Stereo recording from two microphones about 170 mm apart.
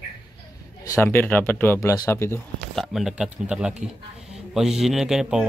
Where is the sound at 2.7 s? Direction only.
Centre (ahead or behind).